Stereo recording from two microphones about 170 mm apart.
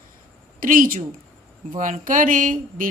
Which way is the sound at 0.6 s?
55° right (ahead or behind).